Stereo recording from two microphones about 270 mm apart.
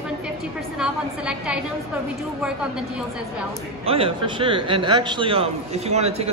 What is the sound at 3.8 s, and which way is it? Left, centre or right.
A man's voice, right.